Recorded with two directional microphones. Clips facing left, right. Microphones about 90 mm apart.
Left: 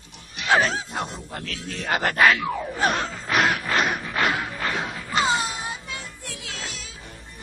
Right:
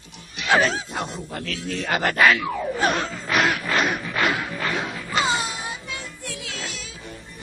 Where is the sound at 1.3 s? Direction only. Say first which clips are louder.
Right 5 dB; 35° left (ahead or behind).